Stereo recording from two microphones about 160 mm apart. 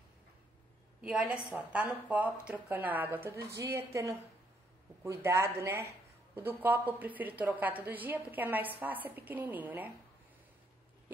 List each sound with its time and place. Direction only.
1.0 s a woman's voice: 5° right (ahead or behind)